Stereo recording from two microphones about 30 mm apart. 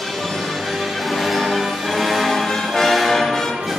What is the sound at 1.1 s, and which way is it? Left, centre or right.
Music, centre.